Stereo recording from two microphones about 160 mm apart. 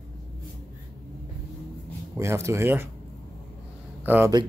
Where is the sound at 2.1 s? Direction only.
15° right (ahead or behind).